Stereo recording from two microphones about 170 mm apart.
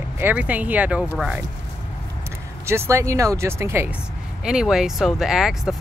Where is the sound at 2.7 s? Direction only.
15° right (ahead or behind).